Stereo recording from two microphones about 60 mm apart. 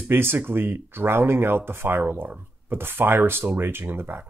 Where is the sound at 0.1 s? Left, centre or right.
Right.